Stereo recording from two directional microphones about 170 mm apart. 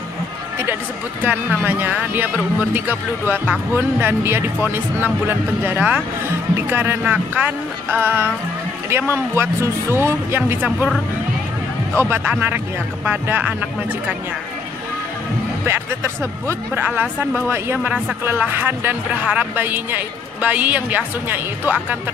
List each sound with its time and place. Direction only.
1.2 s speech: 10° right (ahead or behind)
12.0 s speech: 10° right (ahead or behind)
15.6 s speech: 15° right (ahead or behind)